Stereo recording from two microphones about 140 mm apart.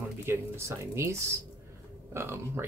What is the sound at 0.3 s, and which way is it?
Speech, 20° right (ahead or behind).